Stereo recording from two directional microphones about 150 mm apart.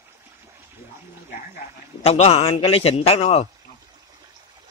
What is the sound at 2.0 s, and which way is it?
Speech, 45° left (ahead or behind).